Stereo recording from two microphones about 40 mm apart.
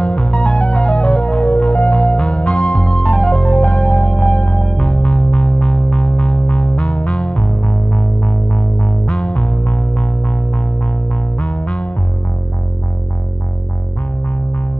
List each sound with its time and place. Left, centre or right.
0.0 s music: left; by 3.3 s centre
3.3 s music: left
14.2 s music: left